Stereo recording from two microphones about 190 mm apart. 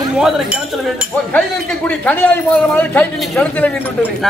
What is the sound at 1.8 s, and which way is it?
A man's voice, 10° left (ahead or behind).